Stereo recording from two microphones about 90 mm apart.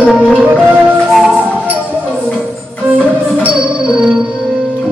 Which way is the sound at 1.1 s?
5° right (ahead or behind).